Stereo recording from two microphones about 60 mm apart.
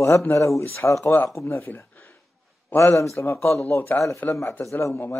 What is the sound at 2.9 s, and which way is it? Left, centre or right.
Speech, left.